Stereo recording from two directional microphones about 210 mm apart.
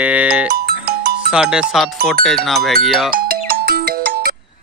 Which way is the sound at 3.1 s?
45° right (ahead or behind).